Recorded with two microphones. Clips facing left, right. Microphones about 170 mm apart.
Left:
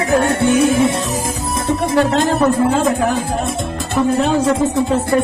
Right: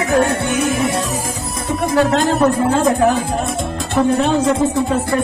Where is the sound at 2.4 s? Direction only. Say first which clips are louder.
Even; centre (ahead or behind).